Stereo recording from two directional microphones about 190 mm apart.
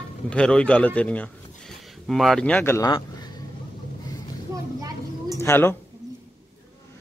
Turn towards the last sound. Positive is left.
turn(degrees=10)  # may be behind; listen again after turning